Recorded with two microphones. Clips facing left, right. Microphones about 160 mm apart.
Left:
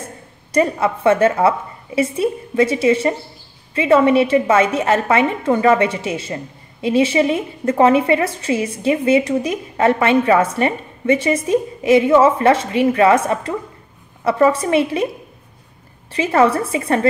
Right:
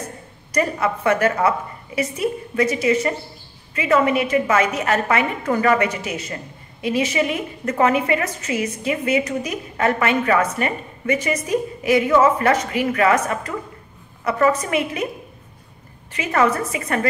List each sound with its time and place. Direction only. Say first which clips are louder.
0.0 s a woman's voice: right 1 dB; 25° left (ahead or behind)
16.1 s a woman's voice: left 4 dB; 30° left (ahead or behind)